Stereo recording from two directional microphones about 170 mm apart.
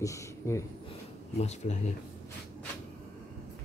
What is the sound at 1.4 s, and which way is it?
Speech, 45° left (ahead or behind).